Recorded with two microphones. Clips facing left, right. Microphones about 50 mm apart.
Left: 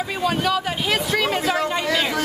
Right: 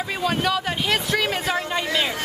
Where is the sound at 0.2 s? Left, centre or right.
Centre.